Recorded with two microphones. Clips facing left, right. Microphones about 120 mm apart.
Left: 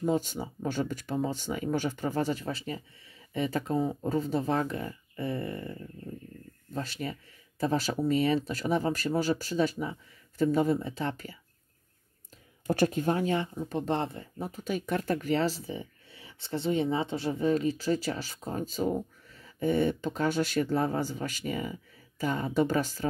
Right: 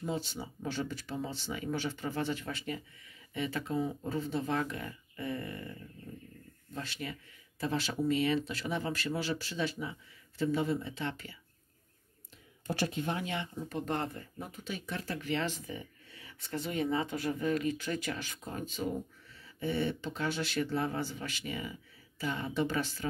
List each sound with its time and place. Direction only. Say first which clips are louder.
0.0 s speech: left 8 dB; 45° left (ahead or behind)
12.6 s a woman's voice: left 8 dB; 45° left (ahead or behind)